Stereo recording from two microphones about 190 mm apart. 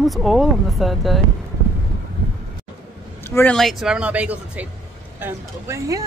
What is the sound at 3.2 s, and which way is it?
Speech, 10° left (ahead or behind).